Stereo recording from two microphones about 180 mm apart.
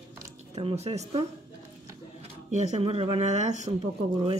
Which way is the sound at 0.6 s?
35° right (ahead or behind).